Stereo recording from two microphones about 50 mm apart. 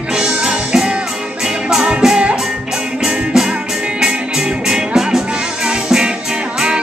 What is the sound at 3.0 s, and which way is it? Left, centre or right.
Music, centre.